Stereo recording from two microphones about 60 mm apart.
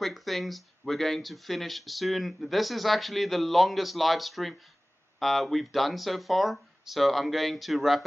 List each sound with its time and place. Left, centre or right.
0.0 s speech: centre